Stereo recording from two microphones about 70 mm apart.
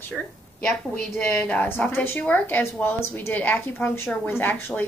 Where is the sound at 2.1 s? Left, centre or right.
Left.